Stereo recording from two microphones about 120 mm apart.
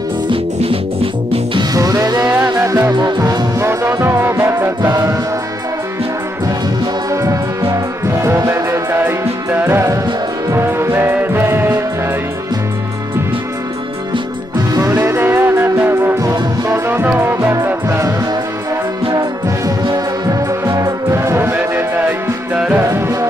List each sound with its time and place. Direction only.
0.3 s music: 50° right (ahead or behind)
1.5 s music: 35° right (ahead or behind)
4.0 s music: 20° right (ahead or behind)
7.1 s music: 25° right (ahead or behind)
14.7 s music: 30° right (ahead or behind); by 22.8 s 10° right (ahead or behind)
22.8 s music: 25° right (ahead or behind)